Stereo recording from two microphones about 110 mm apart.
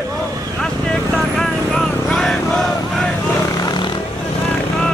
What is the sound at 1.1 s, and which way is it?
Vehicle, 5° left (ahead or behind).